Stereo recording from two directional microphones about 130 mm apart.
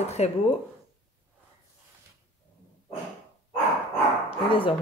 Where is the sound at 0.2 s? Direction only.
60° left (ahead or behind).